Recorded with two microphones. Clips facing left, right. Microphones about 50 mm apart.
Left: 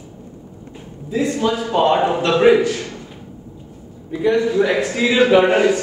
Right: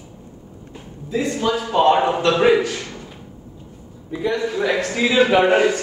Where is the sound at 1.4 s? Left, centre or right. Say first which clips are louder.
Right 1 dB; centre.